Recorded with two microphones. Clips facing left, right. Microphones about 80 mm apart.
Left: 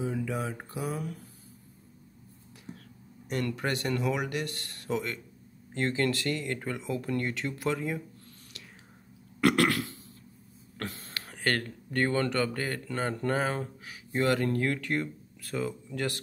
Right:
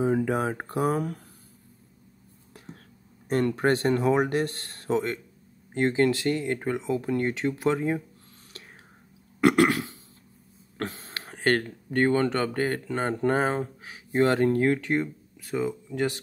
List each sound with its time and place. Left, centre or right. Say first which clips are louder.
0.0 s speech: right 8 dB; right
2.7 s whispering: left 1 dB; right
3.3 s speech: right 8 dB; right
9.4 s speech: right 4 dB; right